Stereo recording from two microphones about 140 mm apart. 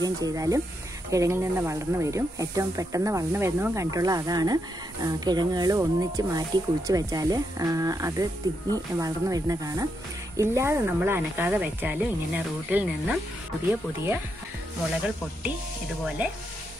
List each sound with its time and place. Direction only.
0.0 s speech: 25° right (ahead or behind); by 13.2 s 5° right (ahead or behind)
16.2 s speech: 10° right (ahead or behind)